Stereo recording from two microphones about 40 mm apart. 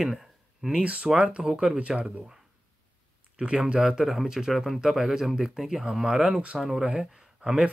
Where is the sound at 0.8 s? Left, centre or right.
Right.